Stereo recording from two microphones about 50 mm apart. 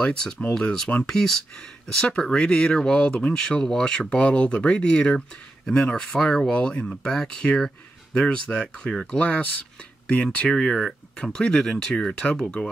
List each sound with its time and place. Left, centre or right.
0.0 s speech: centre
1.0 s speech: centre